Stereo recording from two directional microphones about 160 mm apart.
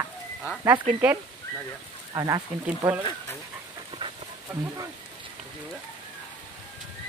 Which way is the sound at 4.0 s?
25° right (ahead or behind).